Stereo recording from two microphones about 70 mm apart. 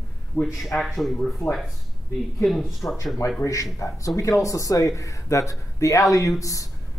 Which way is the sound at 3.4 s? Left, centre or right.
Left.